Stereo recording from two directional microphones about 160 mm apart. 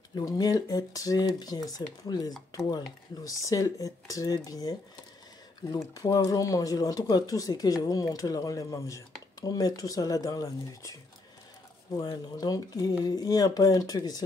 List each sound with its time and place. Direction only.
0.1 s speech: 20° left (ahead or behind)
12.0 s speech: 25° left (ahead or behind)